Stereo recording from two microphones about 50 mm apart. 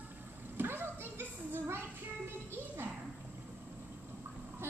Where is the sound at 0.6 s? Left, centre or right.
Right.